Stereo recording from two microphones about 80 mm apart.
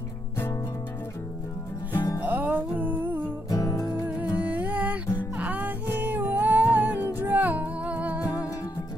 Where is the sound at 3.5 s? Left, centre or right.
Left.